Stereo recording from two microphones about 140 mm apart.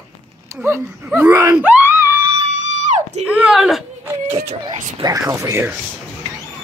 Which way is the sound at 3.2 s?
10° right (ahead or behind).